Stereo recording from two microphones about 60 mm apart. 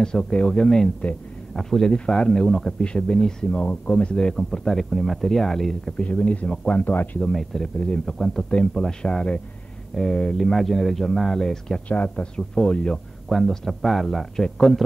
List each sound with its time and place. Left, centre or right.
0.0 s speech: centre
3.6 s speech: left; by 5.9 s centre
5.9 s speech: left
7.2 s speech: centre
8.5 s speech: centre
11.9 s speech: left
13.3 s speech: centre